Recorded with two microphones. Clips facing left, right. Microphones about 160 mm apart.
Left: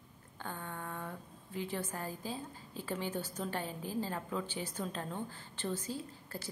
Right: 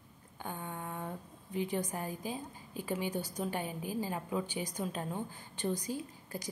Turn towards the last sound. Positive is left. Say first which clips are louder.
# right 3 dB
turn(degrees=-15)  # may be behind; listen again after turning